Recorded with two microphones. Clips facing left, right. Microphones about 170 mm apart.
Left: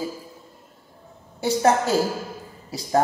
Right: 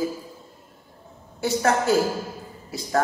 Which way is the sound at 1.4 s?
30° left (ahead or behind).